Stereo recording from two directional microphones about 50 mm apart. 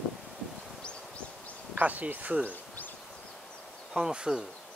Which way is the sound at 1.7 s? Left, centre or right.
Right.